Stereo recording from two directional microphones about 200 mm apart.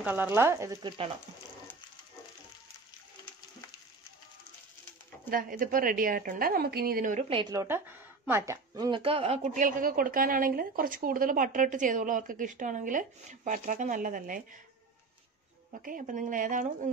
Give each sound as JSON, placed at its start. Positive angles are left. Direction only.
{"t": 0.0, "sound": "speech", "side_deg": -10}
{"t": 5.3, "sound": "a woman's voice", "side_deg": -45}
{"t": 7.2, "sound": "speech", "side_deg": -25}
{"t": 15.8, "sound": "speech", "side_deg": -45}